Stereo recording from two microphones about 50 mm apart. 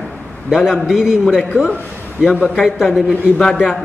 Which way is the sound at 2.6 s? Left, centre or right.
Centre.